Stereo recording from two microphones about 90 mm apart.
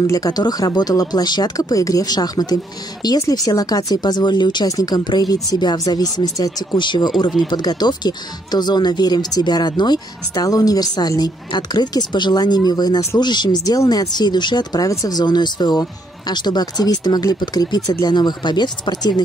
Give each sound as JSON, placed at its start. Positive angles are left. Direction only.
{"t": 0.0, "sound": "speech", "side_deg": 40}
{"t": 4.6, "sound": "speech", "side_deg": 45}
{"t": 6.8, "sound": "speech", "side_deg": 60}